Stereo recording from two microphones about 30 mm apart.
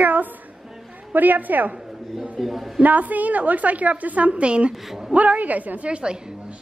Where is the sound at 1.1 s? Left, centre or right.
Right.